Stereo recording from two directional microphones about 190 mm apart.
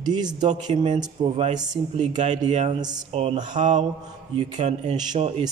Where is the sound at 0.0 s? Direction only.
20° right (ahead or behind); by 5.0 s 35° right (ahead or behind).